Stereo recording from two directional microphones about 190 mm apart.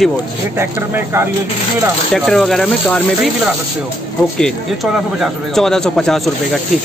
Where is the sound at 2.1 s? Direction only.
Centre (ahead or behind).